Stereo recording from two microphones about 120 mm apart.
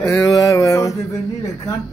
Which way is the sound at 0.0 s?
25° left (ahead or behind).